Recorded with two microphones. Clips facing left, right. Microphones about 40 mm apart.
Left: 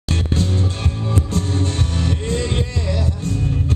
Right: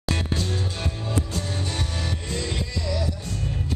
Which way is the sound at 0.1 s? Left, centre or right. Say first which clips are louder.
Left 5 dB; left.